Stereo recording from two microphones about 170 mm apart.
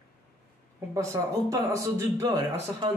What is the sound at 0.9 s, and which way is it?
Speech, 15° right (ahead or behind).